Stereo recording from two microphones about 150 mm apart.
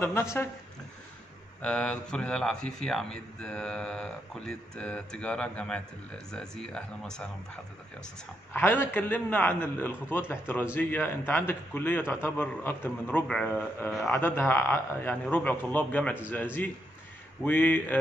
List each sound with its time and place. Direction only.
0.0 s a man's voice: 15° left (ahead or behind)
1.6 s a man's voice: 5° left (ahead or behind)
8.5 s a man's voice: 15° left (ahead or behind)
17.4 s a man's voice: 10° left (ahead or behind)